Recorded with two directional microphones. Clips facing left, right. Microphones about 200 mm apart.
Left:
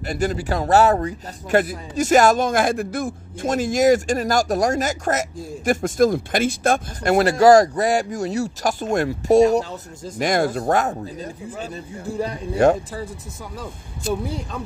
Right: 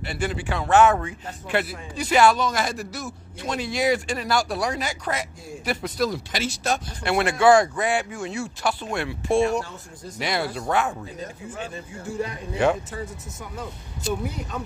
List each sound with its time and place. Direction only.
0.0 s a man's voice: 40° left (ahead or behind)